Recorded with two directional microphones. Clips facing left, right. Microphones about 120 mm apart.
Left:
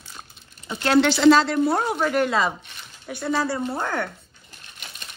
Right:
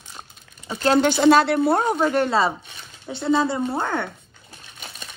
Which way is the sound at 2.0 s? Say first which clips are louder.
Right 2 dB; 30° right (ahead or behind).